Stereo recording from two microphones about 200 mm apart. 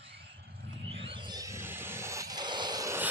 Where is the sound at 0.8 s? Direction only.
25° right (ahead or behind).